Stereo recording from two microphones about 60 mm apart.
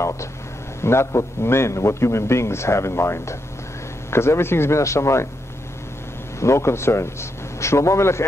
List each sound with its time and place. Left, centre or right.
0.7 s a man's voice: left
6.4 s a man's voice: left